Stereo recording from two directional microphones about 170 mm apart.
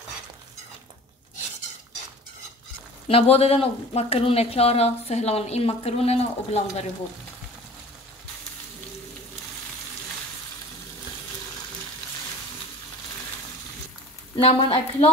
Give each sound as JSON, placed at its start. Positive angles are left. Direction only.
{"t": 3.1, "sound": "speech", "side_deg": 35}
{"t": 14.3, "sound": "speech", "side_deg": 35}